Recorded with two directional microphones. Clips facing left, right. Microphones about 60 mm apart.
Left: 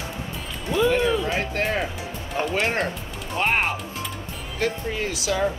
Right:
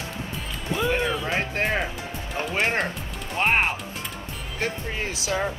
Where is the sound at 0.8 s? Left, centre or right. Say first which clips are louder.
Left 5 dB; right.